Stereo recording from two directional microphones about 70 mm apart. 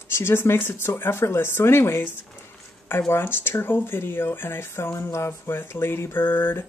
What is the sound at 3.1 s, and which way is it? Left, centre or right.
Speech, left.